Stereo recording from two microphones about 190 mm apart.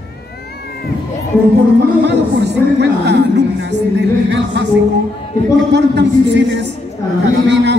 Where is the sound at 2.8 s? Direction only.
65° right (ahead or behind).